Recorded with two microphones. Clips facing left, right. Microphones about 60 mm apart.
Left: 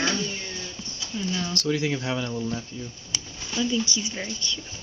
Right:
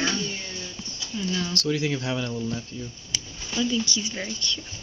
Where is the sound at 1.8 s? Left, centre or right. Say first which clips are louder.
Even; centre.